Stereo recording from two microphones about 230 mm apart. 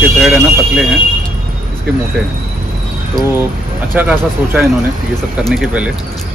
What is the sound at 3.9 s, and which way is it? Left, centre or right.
Speech, centre.